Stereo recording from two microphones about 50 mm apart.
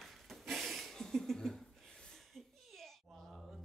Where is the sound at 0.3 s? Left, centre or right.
Centre.